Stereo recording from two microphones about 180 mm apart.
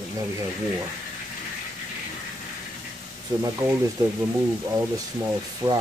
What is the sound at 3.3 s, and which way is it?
Speech, 20° right (ahead or behind).